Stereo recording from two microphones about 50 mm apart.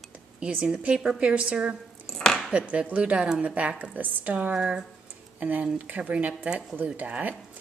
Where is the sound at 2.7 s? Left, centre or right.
Right.